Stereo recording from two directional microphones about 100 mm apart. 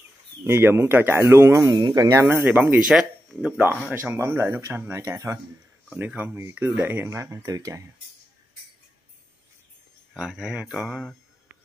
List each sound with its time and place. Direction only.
0.5 s speech: 25° right (ahead or behind)
1.8 s speech: 50° right (ahead or behind)
2.0 s speech: 30° right (ahead or behind); by 3.6 s 5° right (ahead or behind)
4.0 s speech: 25° right (ahead or behind)
5.9 s speech: 15° right (ahead or behind)
7.1 s speech: 30° right (ahead or behind)
10.1 s speech: 5° right (ahead or behind)